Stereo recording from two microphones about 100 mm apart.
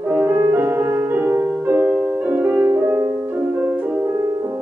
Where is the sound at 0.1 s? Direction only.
20° right (ahead or behind).